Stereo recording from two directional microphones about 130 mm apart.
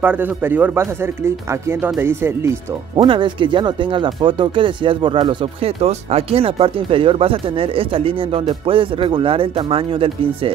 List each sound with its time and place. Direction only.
0.0 s speech: 15° right (ahead or behind)
3.0 s speech: 40° right (ahead or behind)